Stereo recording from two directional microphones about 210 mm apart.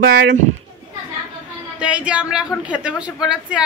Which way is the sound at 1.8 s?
5° right (ahead or behind).